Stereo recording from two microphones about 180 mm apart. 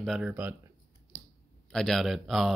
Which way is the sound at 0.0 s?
5° right (ahead or behind).